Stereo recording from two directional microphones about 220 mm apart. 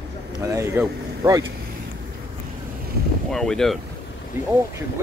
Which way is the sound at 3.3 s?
Centre (ahead or behind).